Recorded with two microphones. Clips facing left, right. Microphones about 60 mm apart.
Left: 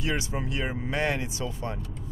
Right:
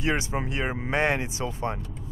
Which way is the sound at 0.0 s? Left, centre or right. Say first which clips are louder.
Right 3 dB; right.